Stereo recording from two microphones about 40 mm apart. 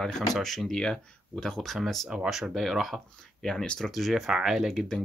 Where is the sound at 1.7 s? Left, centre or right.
Centre.